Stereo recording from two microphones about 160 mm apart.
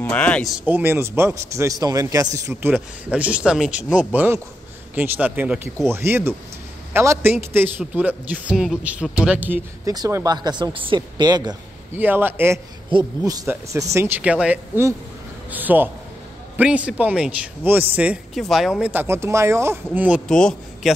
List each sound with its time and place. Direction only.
0.0 s speech: 10° left (ahead or behind)
0.7 s a man's voice: 10° right (ahead or behind)
2.7 s speech: 10° right (ahead or behind)
9.8 s a man's voice: 20° right (ahead or behind)
11.9 s speech: 10° right (ahead or behind)
20.2 s a man's voice: 5° left (ahead or behind)